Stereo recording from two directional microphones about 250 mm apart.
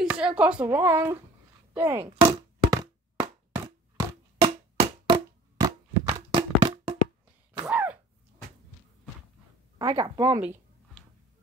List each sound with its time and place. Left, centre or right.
0.0 s speech: centre
2.1 s a sound: centre
7.6 s sneeze: centre
9.8 s speech: centre